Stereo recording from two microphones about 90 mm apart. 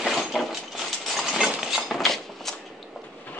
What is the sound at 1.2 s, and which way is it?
Engine, 5° right (ahead or behind).